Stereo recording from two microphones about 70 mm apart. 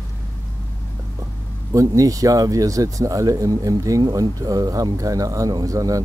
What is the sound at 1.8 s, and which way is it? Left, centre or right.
Speech, right.